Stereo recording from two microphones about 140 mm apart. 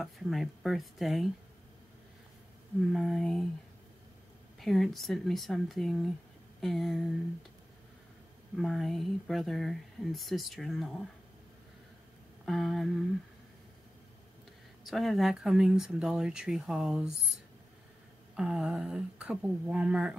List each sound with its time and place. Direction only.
0.0 s speech: centre (ahead or behind)
2.9 s speech: centre (ahead or behind)
4.6 s speech: centre (ahead or behind)
8.5 s speech: centre (ahead or behind)
12.4 s speech: centre (ahead or behind)
14.9 s speech: centre (ahead or behind)
18.3 s speech: 5° right (ahead or behind)